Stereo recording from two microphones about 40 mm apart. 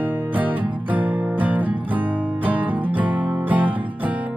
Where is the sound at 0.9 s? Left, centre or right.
Right.